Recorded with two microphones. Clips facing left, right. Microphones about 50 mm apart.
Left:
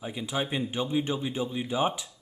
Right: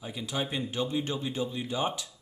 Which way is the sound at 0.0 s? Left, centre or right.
Centre.